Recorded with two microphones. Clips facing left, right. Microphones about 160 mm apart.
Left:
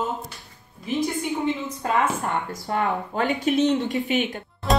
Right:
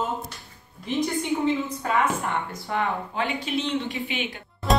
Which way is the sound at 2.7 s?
40° left (ahead or behind).